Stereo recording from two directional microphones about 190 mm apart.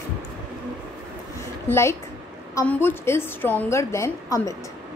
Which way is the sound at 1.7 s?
15° left (ahead or behind).